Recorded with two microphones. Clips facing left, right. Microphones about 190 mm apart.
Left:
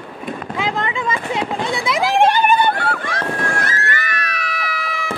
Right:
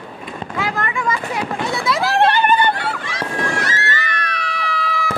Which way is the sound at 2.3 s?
10° left (ahead or behind).